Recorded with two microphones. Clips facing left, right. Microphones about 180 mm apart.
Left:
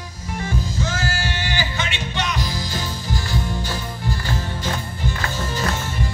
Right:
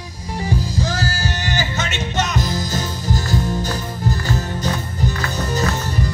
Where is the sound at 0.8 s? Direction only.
35° right (ahead or behind).